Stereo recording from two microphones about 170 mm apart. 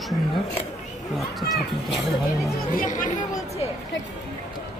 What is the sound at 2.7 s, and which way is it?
Speech, 50° left (ahead or behind).